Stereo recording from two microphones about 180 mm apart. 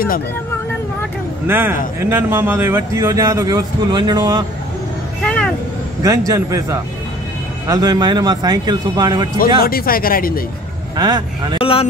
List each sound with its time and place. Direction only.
1.5 s speech: 10° right (ahead or behind)
5.2 s vehicle: 5° left (ahead or behind)
6.0 s a man's voice: 20° right (ahead or behind)
9.6 s speech: 55° left (ahead or behind)
11.0 s a man's voice: 25° right (ahead or behind)
11.6 s speech: 30° left (ahead or behind)